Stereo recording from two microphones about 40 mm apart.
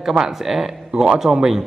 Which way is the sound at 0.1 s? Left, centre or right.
Centre.